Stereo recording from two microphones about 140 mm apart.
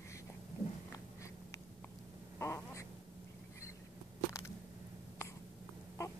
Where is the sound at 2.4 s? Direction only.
20° left (ahead or behind).